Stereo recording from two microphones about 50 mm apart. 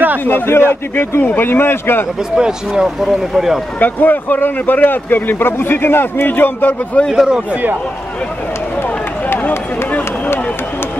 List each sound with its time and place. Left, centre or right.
0.2 s a man's voice: left
2.3 s speech: centre
3.8 s speech: left
7.0 s speech: left
9.8 s run: left